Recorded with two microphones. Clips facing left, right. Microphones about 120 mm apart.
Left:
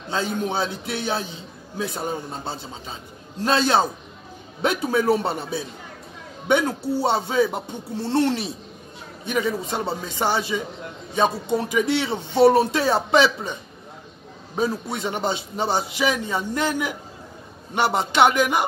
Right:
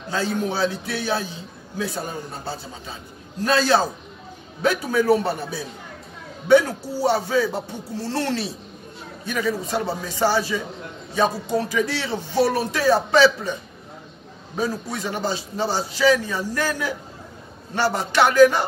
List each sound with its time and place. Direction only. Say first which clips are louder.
0.1 s a man's voice: right 1 dB; 25° left (ahead or behind)
11.7 s a man's voice: left 2 dB; 20° left (ahead or behind)
14.6 s a man's voice: left 1 dB; 20° left (ahead or behind)